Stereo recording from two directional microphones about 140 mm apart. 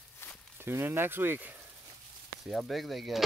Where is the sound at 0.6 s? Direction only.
15° right (ahead or behind).